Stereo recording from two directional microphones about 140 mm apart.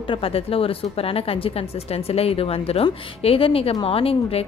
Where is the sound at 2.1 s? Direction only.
45° left (ahead or behind).